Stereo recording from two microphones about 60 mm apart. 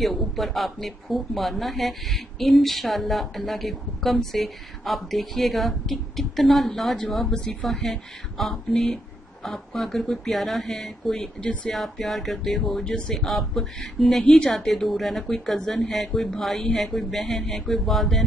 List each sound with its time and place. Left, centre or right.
0.0 s speech: centre
11.7 s speech: centre
14.2 s speech: centre
14.7 s speech: centre